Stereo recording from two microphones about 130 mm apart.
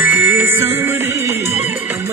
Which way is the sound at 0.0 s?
15° right (ahead or behind).